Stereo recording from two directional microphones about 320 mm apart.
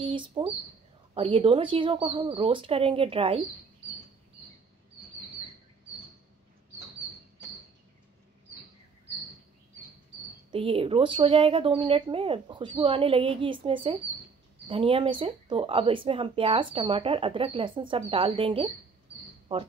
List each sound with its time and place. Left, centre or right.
0.0 s speech: centre
10.5 s speech: centre